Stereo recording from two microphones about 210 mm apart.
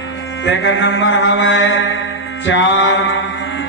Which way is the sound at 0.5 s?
60° left (ahead or behind).